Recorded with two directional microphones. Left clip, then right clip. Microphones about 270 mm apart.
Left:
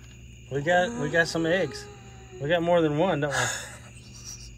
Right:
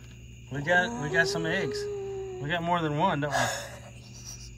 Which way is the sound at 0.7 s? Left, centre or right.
Right.